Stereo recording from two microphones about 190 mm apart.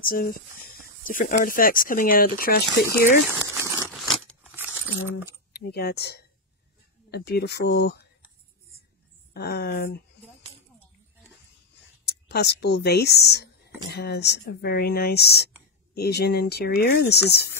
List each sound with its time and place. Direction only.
0.0 s speech: 50° left (ahead or behind)
3.3 s crumpling: 15° right (ahead or behind)
3.9 s a sound: 10° right (ahead or behind)
5.5 s speech: 55° left (ahead or behind)
9.3 s speech: 55° left (ahead or behind)
12.0 s speech: 60° left (ahead or behind)